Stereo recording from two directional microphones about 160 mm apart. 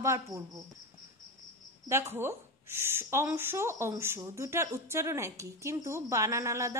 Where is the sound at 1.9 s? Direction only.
15° right (ahead or behind).